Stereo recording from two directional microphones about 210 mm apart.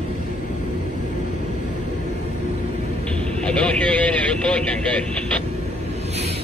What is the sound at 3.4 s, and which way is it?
Speech, 5° left (ahead or behind).